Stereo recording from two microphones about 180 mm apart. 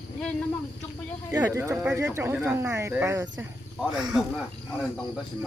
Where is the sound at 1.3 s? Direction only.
15° right (ahead or behind).